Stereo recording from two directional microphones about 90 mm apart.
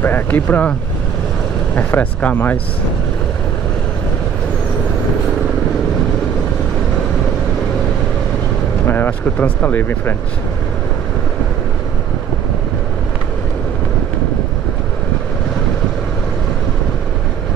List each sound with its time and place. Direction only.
0.0 s speech: 20° left (ahead or behind)
1.8 s speech: 20° left (ahead or behind)
8.8 s speech: 25° left (ahead or behind)